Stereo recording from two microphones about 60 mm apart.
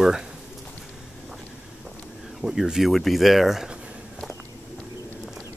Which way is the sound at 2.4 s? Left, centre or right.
Centre.